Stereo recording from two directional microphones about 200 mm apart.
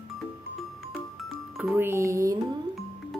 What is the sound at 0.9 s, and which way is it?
Music, 5° right (ahead or behind).